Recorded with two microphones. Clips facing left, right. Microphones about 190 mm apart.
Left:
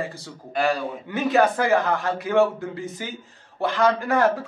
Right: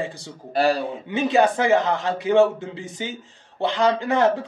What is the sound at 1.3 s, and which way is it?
A man's voice, 20° right (ahead or behind).